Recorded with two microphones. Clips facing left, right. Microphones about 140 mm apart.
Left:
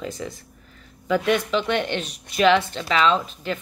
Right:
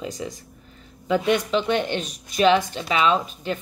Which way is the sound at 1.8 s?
15° right (ahead or behind).